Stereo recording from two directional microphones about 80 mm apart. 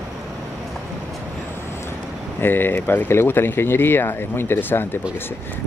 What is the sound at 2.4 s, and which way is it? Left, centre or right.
Speech, left.